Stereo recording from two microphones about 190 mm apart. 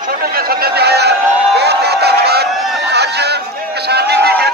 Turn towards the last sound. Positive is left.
turn(degrees=-55)  # may be behind; listen again after turning